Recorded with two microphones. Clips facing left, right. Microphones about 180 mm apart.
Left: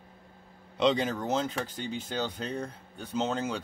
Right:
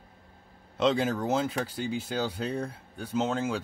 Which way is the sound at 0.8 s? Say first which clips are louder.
Right 1 dB; 5° right (ahead or behind).